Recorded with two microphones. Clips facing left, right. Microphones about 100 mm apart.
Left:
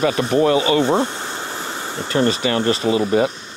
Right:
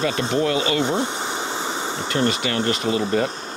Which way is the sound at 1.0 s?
20° right (ahead or behind).